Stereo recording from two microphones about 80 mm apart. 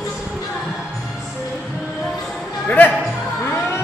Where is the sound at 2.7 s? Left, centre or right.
Centre.